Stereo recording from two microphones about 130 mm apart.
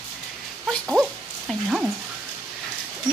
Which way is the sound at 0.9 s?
Centre (ahead or behind).